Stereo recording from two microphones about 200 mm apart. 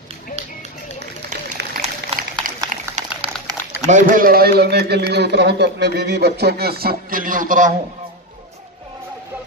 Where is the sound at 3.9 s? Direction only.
45° right (ahead or behind).